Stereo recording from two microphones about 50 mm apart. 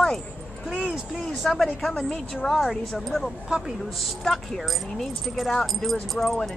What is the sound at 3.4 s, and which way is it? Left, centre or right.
Speech, centre.